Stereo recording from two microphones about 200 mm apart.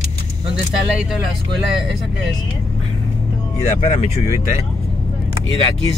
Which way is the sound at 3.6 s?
30° left (ahead or behind).